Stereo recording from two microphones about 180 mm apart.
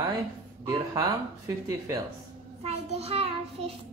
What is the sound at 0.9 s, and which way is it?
Speech, 20° right (ahead or behind).